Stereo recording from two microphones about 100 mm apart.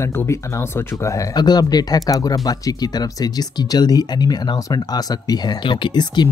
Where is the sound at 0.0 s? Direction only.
25° left (ahead or behind).